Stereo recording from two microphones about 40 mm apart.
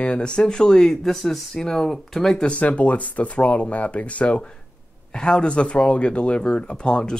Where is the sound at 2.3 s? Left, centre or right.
Left.